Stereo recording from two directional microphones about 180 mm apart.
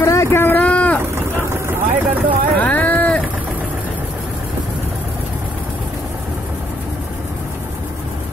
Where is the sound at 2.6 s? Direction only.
10° left (ahead or behind).